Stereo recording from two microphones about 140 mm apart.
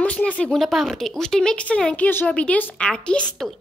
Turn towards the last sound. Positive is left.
turn(degrees=5)  # may be behind; listen again after turning